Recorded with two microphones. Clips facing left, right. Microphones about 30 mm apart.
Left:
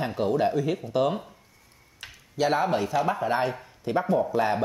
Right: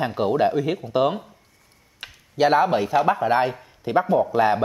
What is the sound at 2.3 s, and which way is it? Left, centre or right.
Speech, right.